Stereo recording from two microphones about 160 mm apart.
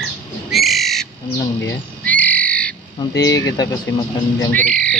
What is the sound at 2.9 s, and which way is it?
Speech, 20° left (ahead or behind).